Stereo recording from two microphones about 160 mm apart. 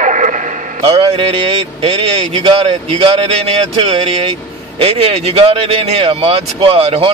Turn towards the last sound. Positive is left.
turn(degrees=-35)  # may be behind; listen again after turning